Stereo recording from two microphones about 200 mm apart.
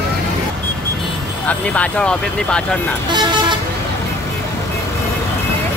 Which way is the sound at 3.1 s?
25° right (ahead or behind).